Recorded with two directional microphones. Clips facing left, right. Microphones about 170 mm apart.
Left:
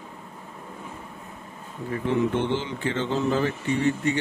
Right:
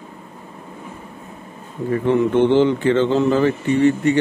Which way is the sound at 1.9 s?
65° right (ahead or behind).